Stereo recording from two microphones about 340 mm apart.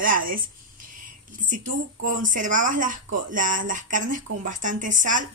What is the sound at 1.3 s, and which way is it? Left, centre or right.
Speech, right.